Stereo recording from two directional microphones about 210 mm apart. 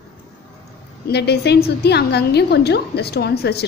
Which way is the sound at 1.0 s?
50° left (ahead or behind).